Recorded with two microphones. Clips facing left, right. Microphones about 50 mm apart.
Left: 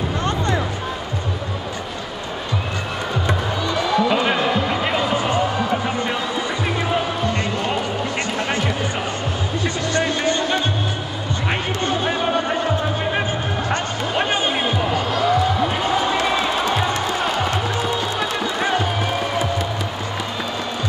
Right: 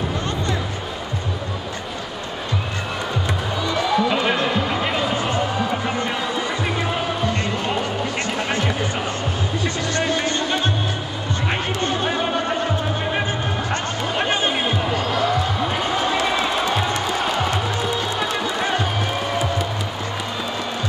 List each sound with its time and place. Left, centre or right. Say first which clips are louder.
3.7 s a sound: left 1 dB; centre
5.7 s music: left 1 dB; centre
12.0 s chatter: left 1 dB; centre
12.4 s music: left 1 dB; centre
13.7 s music: left 1 dB; centre
14.5 s a sound: left 1 dB; centre
17.0 s music: left 1 dB; centre